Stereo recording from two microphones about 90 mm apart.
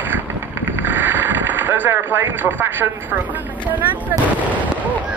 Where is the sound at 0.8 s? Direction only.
20° right (ahead or behind).